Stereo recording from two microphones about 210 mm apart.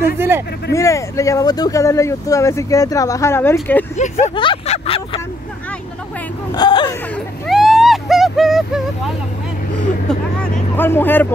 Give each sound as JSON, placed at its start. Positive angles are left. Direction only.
{"t": 0.7, "sound": "speech", "side_deg": 15}
{"t": 3.9, "sound": "speech", "side_deg": 30}
{"t": 6.5, "sound": "whimper", "side_deg": 20}
{"t": 7.4, "sound": "vehicle", "side_deg": 0}
{"t": 10.8, "sound": "speech", "side_deg": 10}